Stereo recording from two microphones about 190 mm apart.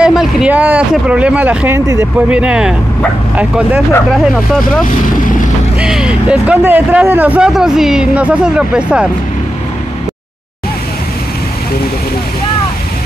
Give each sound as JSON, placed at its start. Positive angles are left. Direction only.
{"t": 0.0, "sound": "speech", "side_deg": -5}
{"t": 4.8, "sound": "speech", "side_deg": 45}
{"t": 5.8, "sound": "a man's voice", "side_deg": -5}